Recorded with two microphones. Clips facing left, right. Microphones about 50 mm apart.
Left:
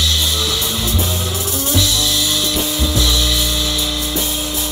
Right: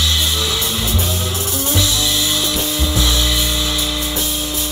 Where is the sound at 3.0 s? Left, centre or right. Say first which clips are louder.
Even; centre.